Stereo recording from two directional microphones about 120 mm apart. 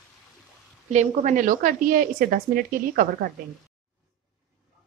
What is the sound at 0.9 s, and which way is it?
A woman's voice, 90° right.